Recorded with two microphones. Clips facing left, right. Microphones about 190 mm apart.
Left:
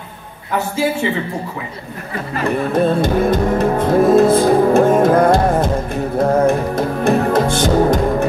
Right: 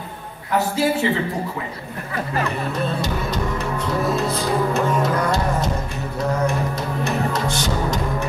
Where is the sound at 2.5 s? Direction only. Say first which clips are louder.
Left 9 dB; 50° left (ahead or behind).